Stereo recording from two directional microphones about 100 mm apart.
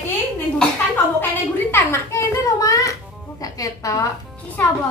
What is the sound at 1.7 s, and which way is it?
A child's voice, 25° left (ahead or behind).